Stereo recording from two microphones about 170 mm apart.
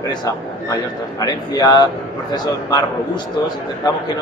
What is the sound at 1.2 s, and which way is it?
A man's voice, 20° left (ahead or behind).